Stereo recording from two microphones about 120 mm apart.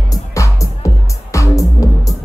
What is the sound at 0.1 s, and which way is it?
Music, 25° left (ahead or behind).